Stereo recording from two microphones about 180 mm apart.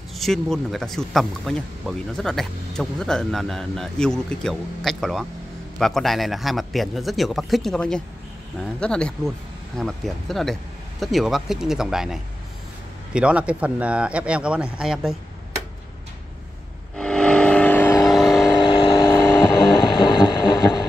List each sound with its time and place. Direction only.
0.2 s speech: centre (ahead or behind)
16.9 s vehicle: 5° left (ahead or behind)
18.0 s vehicle: centre (ahead or behind)
18.6 s vehicle: 25° left (ahead or behind)
19.8 s hum: 25° left (ahead or behind)